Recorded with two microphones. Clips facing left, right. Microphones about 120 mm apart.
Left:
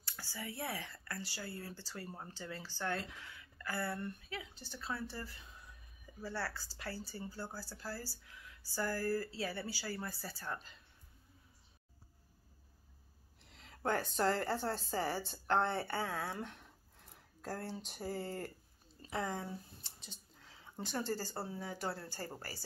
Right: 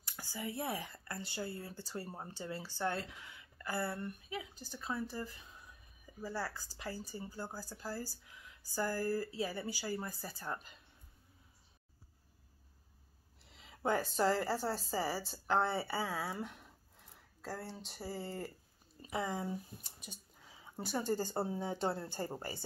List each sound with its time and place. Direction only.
0.0 s speech: 15° right (ahead or behind)
6.2 s speech: 15° right (ahead or behind)
13.4 s a woman's voice: 5° right (ahead or behind); by 22.6 s 20° right (ahead or behind)